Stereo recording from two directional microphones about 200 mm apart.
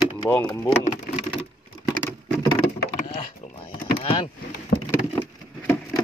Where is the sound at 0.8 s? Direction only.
35° left (ahead or behind).